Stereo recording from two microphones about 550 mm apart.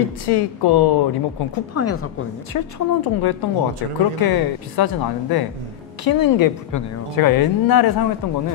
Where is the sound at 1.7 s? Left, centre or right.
Left.